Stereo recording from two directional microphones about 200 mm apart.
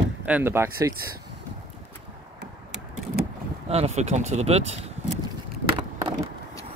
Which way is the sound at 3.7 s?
35° right (ahead or behind).